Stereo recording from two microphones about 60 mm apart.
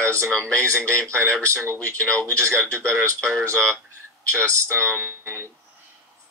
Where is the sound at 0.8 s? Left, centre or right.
Right.